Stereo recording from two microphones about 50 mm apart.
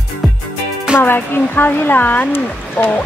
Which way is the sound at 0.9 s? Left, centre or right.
Left.